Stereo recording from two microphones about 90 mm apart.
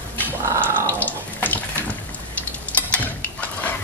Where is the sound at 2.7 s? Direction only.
20° left (ahead or behind).